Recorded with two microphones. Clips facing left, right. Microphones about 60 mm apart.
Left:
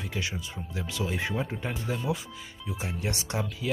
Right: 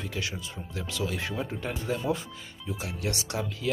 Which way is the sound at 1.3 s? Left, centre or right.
Centre.